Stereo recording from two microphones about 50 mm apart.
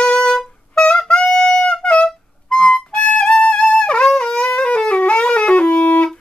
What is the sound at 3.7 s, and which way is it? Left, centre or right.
Music, centre.